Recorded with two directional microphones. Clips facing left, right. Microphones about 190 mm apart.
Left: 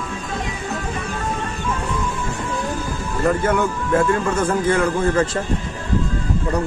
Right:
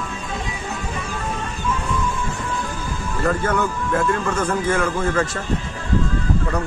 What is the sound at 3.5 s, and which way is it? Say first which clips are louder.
Speech: left 2 dB; 25° left (ahead or behind).